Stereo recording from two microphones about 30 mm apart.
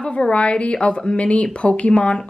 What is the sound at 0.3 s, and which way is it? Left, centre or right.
A woman's voice, left.